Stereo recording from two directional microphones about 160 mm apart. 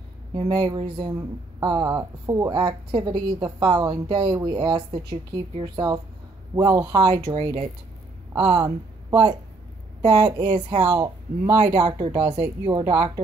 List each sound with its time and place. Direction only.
0.3 s speech: 25° right (ahead or behind)
8.4 s speech: 35° right (ahead or behind)
10.2 s speech: 25° right (ahead or behind)
10.9 s speech: 25° right (ahead or behind)
12.3 s speech: 35° right (ahead or behind)